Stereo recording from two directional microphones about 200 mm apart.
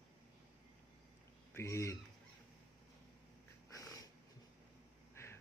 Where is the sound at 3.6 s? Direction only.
15° left (ahead or behind).